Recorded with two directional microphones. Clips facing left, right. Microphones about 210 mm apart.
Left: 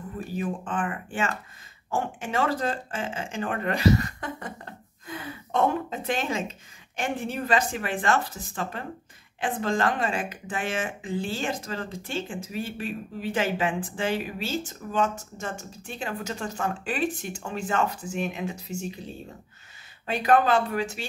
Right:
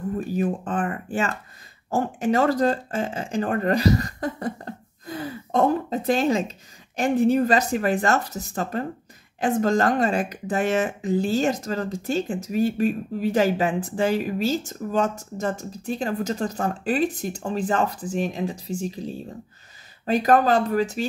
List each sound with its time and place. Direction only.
0.4 s speech: 40° right (ahead or behind)